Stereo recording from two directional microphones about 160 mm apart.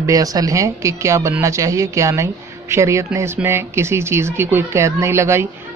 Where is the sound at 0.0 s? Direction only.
20° right (ahead or behind).